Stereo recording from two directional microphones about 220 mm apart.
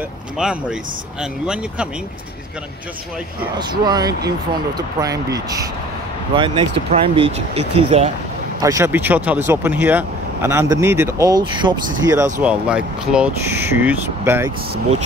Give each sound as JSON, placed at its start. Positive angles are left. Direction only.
{"t": 0.4, "sound": "speech", "side_deg": -5}
{"t": 3.5, "sound": "speech", "side_deg": -20}
{"t": 8.6, "sound": "speech", "side_deg": -15}
{"t": 12.1, "sound": "speech", "side_deg": -10}